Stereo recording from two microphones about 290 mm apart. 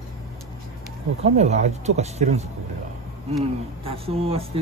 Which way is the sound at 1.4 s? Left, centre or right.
Right.